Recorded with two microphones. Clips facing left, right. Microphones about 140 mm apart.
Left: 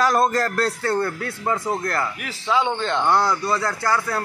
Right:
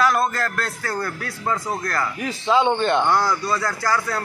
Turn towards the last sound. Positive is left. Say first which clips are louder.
# even
turn(degrees=25)  # may be behind; listen again after turning